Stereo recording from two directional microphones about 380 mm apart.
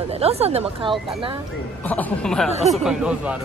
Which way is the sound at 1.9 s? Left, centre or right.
Centre.